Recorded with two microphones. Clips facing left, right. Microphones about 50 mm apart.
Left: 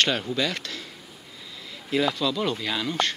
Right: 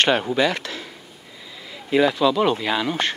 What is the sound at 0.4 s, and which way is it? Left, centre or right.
Speech, centre.